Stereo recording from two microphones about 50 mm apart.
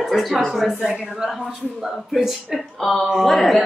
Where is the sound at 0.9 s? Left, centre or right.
Centre.